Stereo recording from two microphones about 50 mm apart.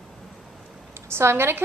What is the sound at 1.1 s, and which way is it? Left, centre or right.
Speech, right.